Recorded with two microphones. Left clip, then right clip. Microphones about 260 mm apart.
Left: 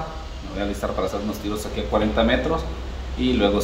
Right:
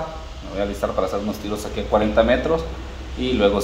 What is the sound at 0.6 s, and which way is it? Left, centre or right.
Speech, right.